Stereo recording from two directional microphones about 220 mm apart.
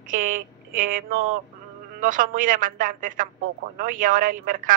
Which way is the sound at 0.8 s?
40° right (ahead or behind).